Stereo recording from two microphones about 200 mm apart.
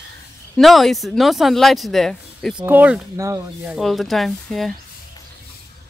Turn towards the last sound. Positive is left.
turn(degrees=0)  # may be behind; listen again after turning